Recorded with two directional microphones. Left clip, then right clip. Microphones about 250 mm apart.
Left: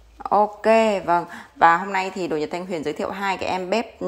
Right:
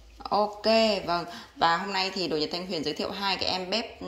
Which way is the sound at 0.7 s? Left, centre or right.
Left.